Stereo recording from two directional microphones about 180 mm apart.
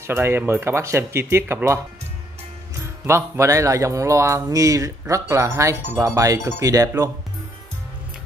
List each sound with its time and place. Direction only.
0.0 s speech: 15° right (ahead or behind)
3.1 s speech: 15° right (ahead or behind)